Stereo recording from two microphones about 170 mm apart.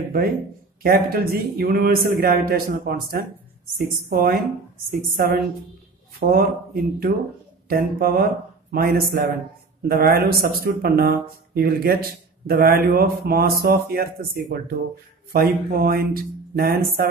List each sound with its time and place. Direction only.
0.8 s speech: 65° right (ahead or behind)